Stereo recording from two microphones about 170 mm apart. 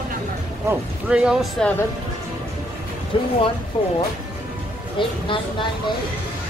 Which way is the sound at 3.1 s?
30° left (ahead or behind).